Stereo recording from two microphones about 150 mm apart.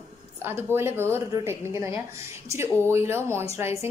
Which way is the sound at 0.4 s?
15° right (ahead or behind).